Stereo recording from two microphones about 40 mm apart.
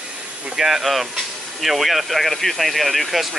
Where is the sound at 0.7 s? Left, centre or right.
Centre.